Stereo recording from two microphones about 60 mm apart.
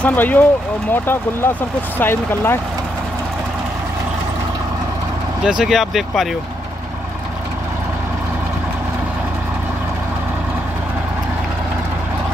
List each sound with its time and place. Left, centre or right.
0.0 s speech: left
5.4 s speech: centre